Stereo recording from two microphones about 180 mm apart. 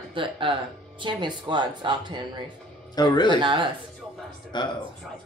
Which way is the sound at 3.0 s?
25° left (ahead or behind).